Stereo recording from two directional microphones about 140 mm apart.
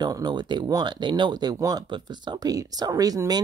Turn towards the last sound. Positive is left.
turn(degrees=-25)  # may be behind; listen again after turning